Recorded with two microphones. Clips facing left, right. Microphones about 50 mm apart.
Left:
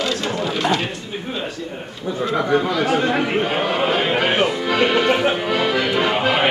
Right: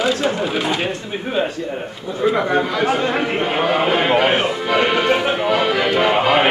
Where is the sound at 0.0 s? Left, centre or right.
Centre.